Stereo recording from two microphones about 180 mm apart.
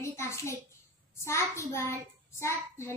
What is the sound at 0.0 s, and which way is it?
A child's voice, 15° left (ahead or behind).